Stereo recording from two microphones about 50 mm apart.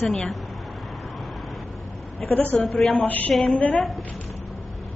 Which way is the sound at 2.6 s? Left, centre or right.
Centre.